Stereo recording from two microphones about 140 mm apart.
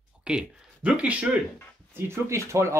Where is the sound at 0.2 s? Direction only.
5° right (ahead or behind).